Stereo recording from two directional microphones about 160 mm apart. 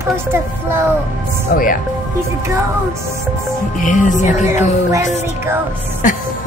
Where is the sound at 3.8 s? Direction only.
55° left (ahead or behind).